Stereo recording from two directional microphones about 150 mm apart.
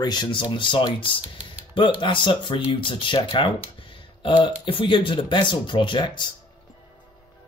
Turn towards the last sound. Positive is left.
turn(degrees=30)  # may be behind; listen again after turning